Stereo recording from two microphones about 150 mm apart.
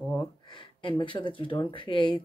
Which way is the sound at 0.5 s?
30° left (ahead or behind).